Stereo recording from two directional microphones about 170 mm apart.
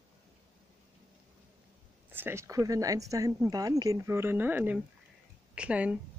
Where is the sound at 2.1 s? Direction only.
15° right (ahead or behind).